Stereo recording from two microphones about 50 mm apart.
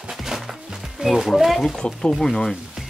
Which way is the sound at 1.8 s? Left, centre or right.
Centre.